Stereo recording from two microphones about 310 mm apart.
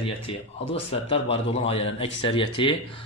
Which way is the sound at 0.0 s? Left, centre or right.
Centre.